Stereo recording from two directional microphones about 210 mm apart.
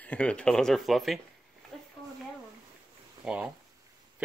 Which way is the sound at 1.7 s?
Centre (ahead or behind).